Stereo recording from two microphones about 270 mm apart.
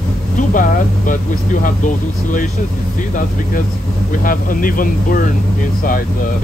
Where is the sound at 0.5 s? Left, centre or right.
Left.